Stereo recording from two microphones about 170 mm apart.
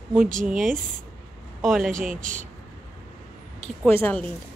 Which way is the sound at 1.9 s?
50° right (ahead or behind).